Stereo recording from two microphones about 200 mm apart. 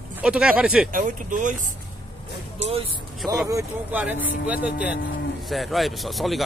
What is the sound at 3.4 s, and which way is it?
A man's voice, 10° right (ahead or behind).